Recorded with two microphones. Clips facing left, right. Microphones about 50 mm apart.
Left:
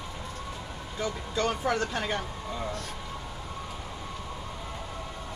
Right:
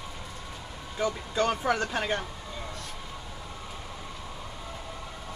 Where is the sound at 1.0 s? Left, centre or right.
Centre.